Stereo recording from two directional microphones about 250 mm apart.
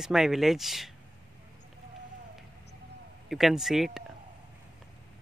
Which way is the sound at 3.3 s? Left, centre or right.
Centre.